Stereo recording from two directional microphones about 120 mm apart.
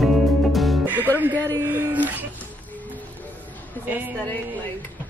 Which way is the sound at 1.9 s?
15° right (ahead or behind).